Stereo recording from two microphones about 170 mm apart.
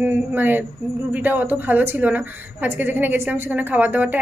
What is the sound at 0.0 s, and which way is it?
A woman's voice, 10° right (ahead or behind).